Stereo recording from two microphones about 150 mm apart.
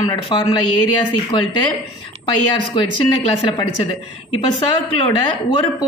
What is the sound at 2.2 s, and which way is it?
Speech, 30° left (ahead or behind).